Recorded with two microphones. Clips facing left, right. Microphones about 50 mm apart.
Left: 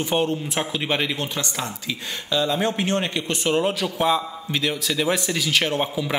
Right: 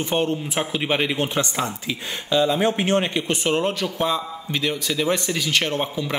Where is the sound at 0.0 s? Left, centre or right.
Centre.